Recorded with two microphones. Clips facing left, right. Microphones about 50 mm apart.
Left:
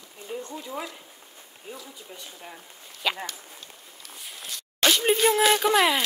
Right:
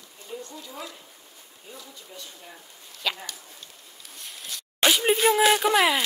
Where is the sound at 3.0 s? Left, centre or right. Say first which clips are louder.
Left 2 dB; centre.